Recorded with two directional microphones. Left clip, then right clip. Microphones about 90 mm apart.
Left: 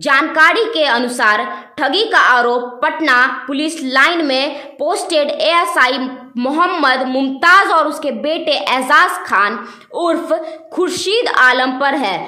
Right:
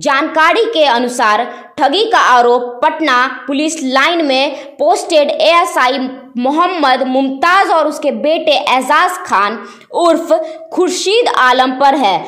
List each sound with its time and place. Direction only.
0.0 s a woman's voice: 25° right (ahead or behind)
7.1 s a woman's voice: 5° right (ahead or behind)
7.3 s a woman's voice: 20° right (ahead or behind)